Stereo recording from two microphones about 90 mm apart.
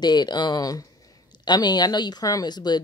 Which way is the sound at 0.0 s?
50° left (ahead or behind).